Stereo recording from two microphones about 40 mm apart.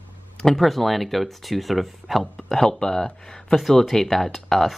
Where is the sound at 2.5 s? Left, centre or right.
Centre.